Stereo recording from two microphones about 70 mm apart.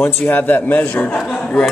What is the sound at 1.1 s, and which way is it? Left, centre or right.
Speech, centre.